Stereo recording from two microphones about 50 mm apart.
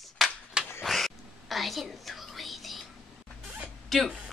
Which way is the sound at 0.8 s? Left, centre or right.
Centre.